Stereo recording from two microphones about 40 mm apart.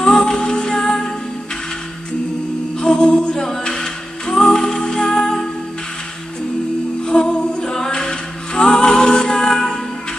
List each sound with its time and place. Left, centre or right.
0.1 s music: centre
2.8 s a capella: left
7.1 s a capella: centre